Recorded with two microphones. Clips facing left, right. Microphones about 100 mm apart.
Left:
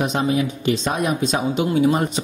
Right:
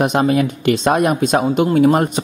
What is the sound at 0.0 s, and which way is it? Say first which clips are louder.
Speech: right 5 dB; 65° right (ahead or behind).